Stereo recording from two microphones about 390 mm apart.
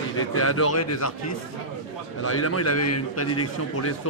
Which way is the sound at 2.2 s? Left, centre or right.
Left.